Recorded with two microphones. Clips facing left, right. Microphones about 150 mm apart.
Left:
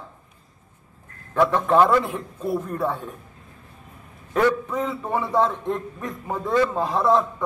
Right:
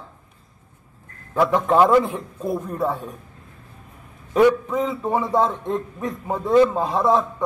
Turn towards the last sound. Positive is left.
turn(degrees=-15)  # may be behind; listen again after turning